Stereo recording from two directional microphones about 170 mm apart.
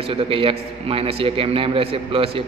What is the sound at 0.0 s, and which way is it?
A man's voice, 35° right (ahead or behind).